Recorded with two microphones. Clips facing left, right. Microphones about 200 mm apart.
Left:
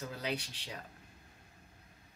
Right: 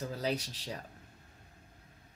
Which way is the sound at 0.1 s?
40° right (ahead or behind).